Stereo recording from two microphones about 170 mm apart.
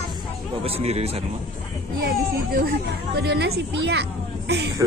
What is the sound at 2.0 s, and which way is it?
A woman's voice, 65° right (ahead or behind).